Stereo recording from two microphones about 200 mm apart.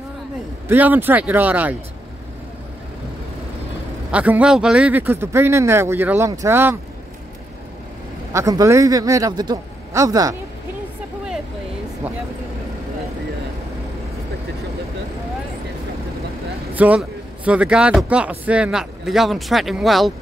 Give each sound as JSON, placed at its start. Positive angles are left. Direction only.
{"t": 0.7, "sound": "a man's voice", "side_deg": -10}
{"t": 4.1, "sound": "a man's voice", "side_deg": -5}
{"t": 8.3, "sound": "a man's voice", "side_deg": -15}
{"t": 16.7, "sound": "a man's voice", "side_deg": -10}